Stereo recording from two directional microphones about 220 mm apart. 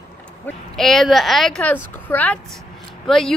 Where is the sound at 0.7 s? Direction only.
Centre (ahead or behind).